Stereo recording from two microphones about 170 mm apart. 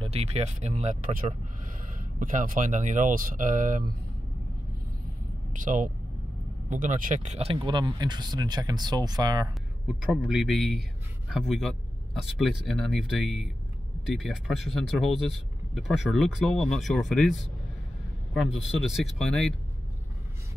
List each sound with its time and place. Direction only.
0.0 s speech: 35° right (ahead or behind)
5.5 s speech: 50° right (ahead or behind); by 9.5 s 25° right (ahead or behind)
9.8 s speech: centre (ahead or behind)